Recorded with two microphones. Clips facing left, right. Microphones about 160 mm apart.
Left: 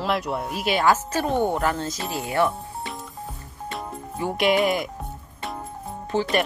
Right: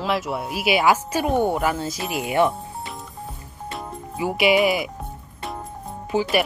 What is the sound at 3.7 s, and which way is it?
Speech, 5° right (ahead or behind).